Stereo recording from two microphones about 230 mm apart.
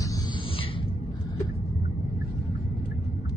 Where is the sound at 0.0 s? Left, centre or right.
Centre.